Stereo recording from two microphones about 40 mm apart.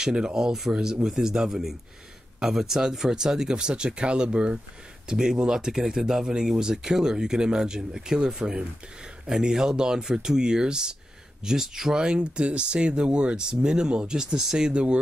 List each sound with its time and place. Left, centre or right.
0.0 s speech: centre
14.7 s speech: right